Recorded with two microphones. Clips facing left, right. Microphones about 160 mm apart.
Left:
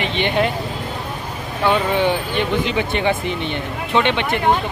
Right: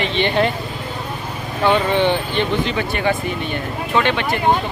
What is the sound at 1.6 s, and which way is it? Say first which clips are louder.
Speech: right 1 dB; 10° left (ahead or behind).